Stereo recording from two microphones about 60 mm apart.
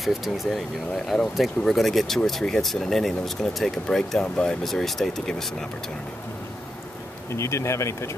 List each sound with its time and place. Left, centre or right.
0.0 s speech: centre
7.2 s speech: left